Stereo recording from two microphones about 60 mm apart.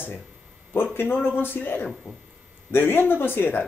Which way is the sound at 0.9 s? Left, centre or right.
Left.